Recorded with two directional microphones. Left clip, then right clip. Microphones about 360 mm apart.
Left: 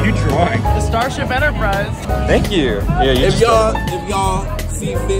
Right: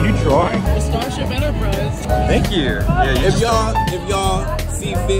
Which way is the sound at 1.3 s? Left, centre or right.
Centre.